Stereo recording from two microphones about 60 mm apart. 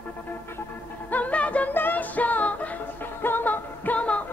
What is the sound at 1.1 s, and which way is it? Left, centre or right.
Music, left.